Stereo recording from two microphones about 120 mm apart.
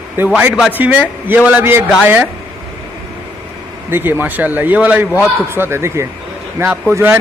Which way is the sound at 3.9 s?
15° right (ahead or behind).